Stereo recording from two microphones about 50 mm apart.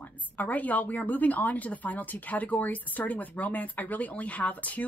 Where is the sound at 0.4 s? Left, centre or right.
Left.